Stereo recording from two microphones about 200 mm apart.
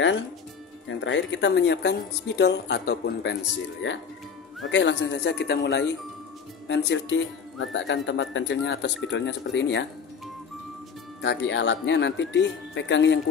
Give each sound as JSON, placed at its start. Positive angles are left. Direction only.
{"t": 0.8, "sound": "speech", "side_deg": 65}
{"t": 11.1, "sound": "speech", "side_deg": 65}